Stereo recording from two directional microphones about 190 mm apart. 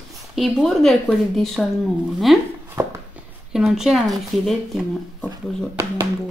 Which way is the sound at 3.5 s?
Centre (ahead or behind).